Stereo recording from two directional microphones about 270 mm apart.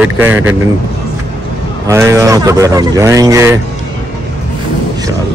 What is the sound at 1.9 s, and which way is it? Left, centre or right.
Speech, centre.